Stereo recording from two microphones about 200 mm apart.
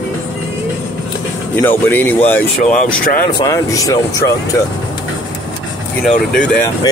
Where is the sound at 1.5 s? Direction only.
10° left (ahead or behind).